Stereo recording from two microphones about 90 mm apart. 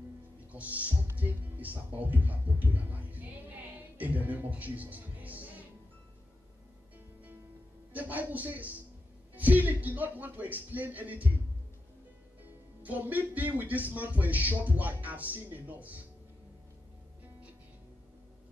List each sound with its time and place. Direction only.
0.5 s music: 15° right (ahead or behind)
1.1 s speech: 20° right (ahead or behind)
7.9 s speech: 20° right (ahead or behind)
12.8 s speech: 20° right (ahead or behind)